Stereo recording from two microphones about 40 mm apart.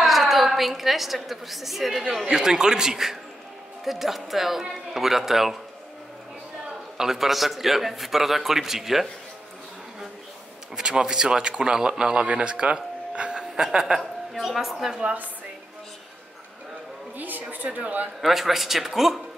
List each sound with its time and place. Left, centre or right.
0.0 s a woman's voice: centre
7.0 s a man's voice: centre
10.8 s speech: centre
12.2 s a sound: right
13.7 s a man's voice: centre
17.2 s speech: right
18.2 s a man's voice: centre